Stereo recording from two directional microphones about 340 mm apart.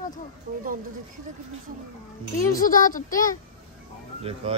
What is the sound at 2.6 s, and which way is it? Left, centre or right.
Speech, left.